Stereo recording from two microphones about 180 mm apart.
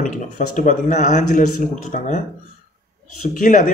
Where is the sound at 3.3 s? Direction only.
45° left (ahead or behind).